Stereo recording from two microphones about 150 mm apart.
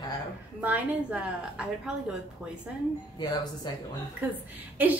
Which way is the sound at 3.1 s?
30° left (ahead or behind).